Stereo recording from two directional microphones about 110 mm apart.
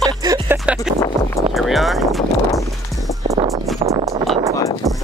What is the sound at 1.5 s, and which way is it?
Music, centre (ahead or behind).